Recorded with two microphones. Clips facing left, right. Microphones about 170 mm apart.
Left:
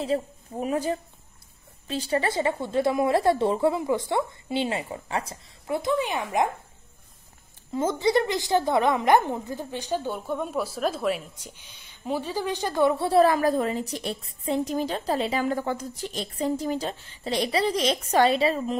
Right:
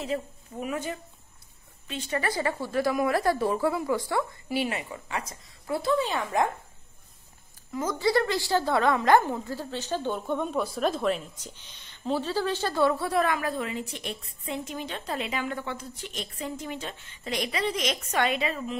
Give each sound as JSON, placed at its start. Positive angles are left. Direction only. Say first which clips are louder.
{"t": 0.0, "sound": "a woman's voice", "louder": "left 5 dB", "side_deg": 35}
{"t": 7.7, "sound": "a woman's voice", "louder": "left 3 dB", "side_deg": 25}